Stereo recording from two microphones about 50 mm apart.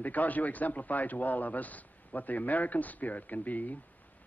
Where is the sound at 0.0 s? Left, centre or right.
Left.